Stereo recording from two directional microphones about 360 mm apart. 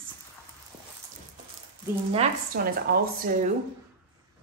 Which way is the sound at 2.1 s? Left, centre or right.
Right.